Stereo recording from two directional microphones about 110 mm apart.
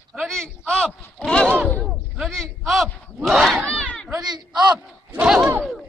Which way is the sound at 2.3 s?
5° left (ahead or behind).